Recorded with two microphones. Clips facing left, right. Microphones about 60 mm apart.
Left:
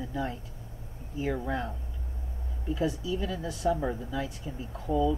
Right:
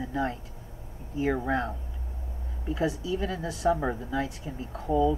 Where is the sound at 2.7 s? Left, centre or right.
Centre.